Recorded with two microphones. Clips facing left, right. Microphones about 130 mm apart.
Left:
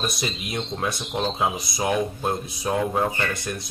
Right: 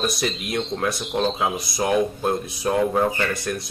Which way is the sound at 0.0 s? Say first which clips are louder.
Right 4 dB; centre (ahead or behind).